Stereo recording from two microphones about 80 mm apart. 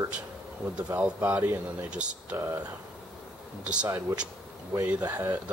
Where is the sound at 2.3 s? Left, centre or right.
Right.